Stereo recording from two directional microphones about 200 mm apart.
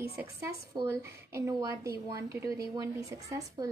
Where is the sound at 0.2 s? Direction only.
15° right (ahead or behind).